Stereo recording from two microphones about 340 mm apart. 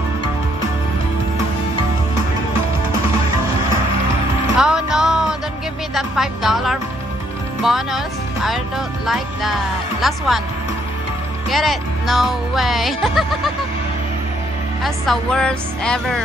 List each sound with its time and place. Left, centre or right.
4.6 s music: centre
7.6 s speech: centre
11.5 s speech: centre
14.8 s speech: centre